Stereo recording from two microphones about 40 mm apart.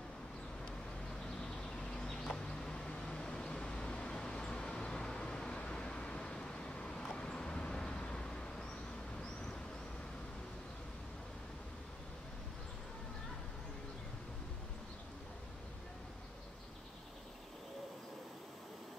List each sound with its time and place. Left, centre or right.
1.4 s vehicle: centre